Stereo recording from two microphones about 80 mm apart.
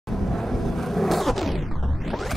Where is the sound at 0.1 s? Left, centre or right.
Centre.